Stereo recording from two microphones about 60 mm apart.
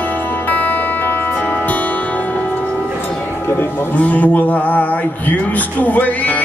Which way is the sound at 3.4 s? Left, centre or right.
Left.